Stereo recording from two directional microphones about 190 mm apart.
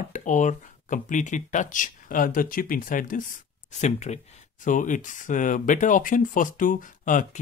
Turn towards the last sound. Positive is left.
turn(degrees=40)  # may be behind; listen again after turning